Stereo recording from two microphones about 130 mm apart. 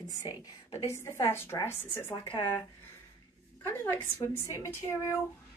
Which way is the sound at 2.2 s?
35° left (ahead or behind).